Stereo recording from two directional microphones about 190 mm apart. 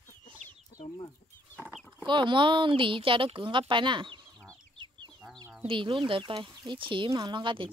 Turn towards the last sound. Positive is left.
turn(degrees=-25)  # may be behind; listen again after turning